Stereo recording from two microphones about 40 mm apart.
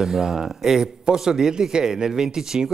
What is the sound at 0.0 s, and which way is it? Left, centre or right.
A man's voice, centre.